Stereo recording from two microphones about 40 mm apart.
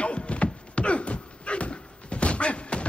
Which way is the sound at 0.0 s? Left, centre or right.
Left.